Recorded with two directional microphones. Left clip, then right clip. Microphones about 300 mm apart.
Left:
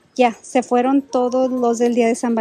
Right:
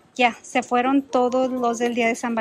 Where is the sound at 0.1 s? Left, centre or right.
Centre.